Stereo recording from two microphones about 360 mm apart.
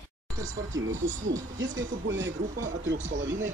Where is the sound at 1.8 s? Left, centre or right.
Right.